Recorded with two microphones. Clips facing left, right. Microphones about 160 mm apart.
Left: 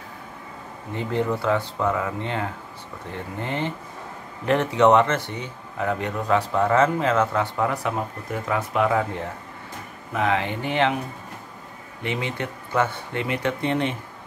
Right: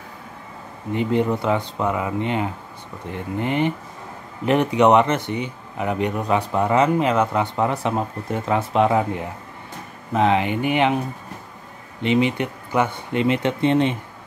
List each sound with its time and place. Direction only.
0.9 s speech: 15° right (ahead or behind)
12.0 s speech: 20° right (ahead or behind)